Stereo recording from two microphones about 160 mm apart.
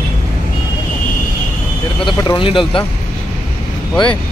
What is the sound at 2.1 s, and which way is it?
Speech, 30° left (ahead or behind).